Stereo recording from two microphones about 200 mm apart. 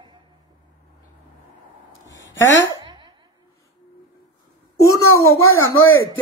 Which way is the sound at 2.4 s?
65° left (ahead or behind).